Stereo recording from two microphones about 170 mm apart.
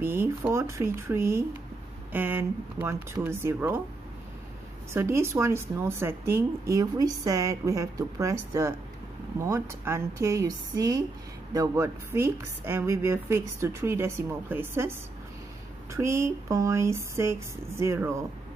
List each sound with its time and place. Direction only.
0.0 s speech: 15° right (ahead or behind)
4.9 s speech: 15° right (ahead or behind)